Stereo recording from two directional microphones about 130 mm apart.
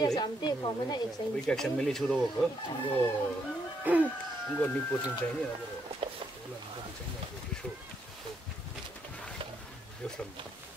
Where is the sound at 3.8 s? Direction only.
10° right (ahead or behind).